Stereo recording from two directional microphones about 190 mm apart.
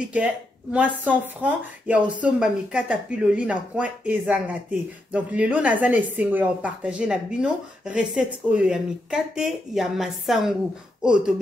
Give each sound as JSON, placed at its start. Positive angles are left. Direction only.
{"t": 0.0, "sound": "speech", "side_deg": -5}